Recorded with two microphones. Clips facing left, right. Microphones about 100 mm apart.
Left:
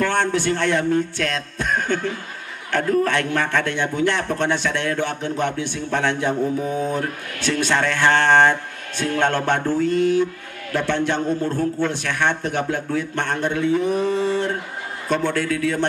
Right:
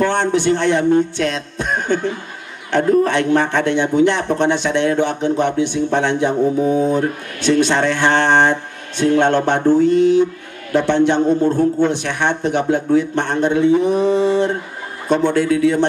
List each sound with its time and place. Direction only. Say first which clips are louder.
0.0 s a man's voice: right 4 dB; 20° right (ahead or behind)